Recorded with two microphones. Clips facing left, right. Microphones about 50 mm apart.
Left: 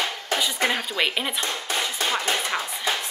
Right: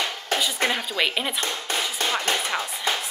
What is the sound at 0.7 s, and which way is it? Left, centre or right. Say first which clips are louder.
Speech: even; centre.